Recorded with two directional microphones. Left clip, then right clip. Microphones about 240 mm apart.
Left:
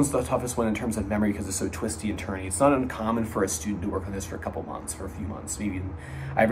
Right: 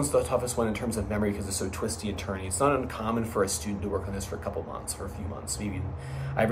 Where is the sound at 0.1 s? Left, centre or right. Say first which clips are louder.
Right 1 dB; centre.